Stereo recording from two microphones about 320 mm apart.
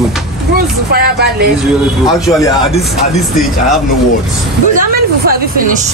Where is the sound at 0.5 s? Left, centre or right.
Right.